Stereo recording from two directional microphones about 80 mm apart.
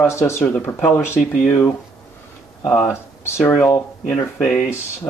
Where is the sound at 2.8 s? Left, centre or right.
Left.